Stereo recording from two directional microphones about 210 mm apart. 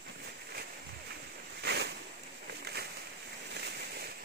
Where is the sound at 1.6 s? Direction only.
50° right (ahead or behind).